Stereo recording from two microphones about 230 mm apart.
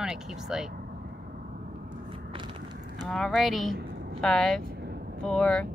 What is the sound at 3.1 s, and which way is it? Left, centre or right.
Speech, centre.